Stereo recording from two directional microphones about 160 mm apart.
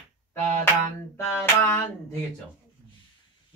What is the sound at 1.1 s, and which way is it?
Music, 15° left (ahead or behind).